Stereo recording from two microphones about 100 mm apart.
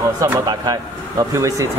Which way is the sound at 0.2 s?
35° right (ahead or behind).